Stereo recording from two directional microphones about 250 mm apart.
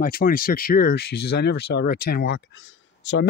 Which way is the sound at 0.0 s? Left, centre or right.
Left.